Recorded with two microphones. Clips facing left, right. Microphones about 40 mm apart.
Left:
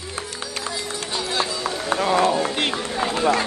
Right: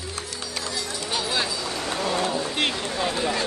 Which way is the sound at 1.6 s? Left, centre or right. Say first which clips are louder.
Left 5 dB; left.